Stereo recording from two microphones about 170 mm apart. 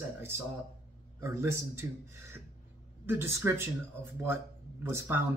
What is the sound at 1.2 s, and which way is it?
Speech, 15° right (ahead or behind).